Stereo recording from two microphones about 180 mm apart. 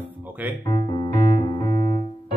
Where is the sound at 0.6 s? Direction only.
20° left (ahead or behind).